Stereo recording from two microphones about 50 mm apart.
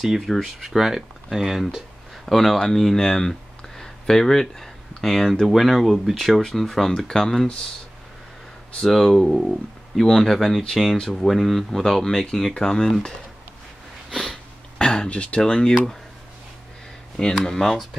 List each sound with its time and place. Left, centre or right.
0.0 s speech: centre
2.2 s speech: centre
8.7 s speech: centre
14.1 s sniff: centre
15.0 s speech: left
17.5 s speech: centre